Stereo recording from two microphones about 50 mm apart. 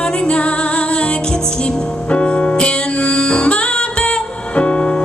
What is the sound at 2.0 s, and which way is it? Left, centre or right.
Music, left.